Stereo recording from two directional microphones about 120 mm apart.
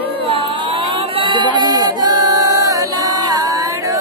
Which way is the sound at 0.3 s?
50° right (ahead or behind).